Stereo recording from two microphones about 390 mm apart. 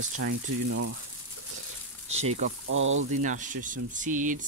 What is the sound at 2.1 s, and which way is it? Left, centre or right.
Speech, centre.